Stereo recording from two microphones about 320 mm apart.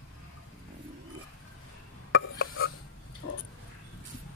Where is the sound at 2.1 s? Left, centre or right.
Left.